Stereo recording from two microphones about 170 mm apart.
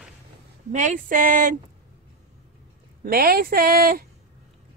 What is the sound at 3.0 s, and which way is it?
Speech, 60° right (ahead or behind).